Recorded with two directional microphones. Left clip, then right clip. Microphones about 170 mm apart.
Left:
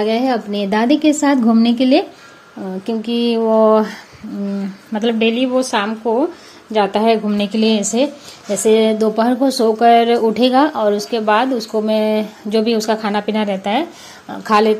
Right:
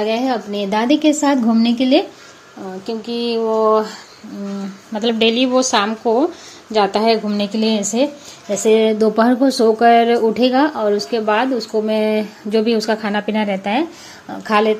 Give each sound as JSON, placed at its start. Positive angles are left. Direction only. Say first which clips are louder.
{"t": 0.0, "sound": "a woman's voice", "louder": "left 2 dB", "side_deg": 15}
{"t": 3.2, "sound": "a sound", "louder": "left 3 dB", "side_deg": 25}
{"t": 5.2, "sound": "a woman's voice", "louder": "right 3 dB", "side_deg": 0}
{"t": 8.9, "sound": "speech", "louder": "right 1 dB", "side_deg": -15}